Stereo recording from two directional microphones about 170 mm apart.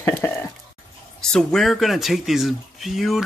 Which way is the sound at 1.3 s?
Centre (ahead or behind).